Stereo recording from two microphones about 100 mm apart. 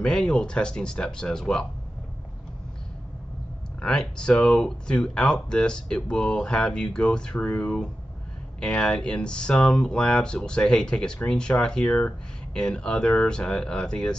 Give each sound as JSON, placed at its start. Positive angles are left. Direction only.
{"t": 0.0, "sound": "speech", "side_deg": 10}
{"t": 3.8, "sound": "speech", "side_deg": 10}